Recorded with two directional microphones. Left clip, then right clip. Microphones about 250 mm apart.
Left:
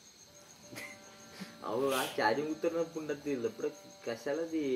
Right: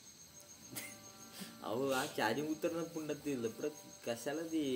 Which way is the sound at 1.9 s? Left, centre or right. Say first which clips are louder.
Left 2 dB; centre.